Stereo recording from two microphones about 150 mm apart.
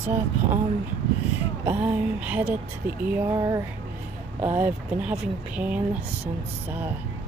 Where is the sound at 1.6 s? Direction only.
10° right (ahead or behind).